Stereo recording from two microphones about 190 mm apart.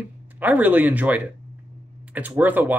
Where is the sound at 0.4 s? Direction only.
10° right (ahead or behind).